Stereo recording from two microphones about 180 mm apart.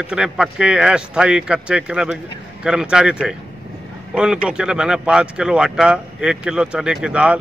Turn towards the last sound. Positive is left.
turn(degrees=-5)  # may be behind; listen again after turning